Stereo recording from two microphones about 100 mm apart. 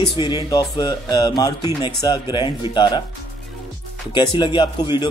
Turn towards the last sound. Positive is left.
turn(degrees=50)  # may be behind; listen again after turning